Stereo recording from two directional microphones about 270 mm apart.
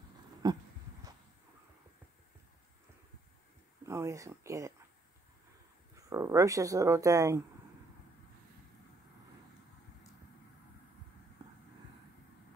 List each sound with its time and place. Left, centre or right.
0.4 s speech: centre
3.8 s speech: centre
6.0 s speech: centre
11.4 s a sound: centre